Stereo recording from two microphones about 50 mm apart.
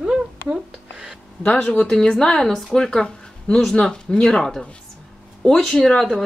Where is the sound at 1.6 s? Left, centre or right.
Left.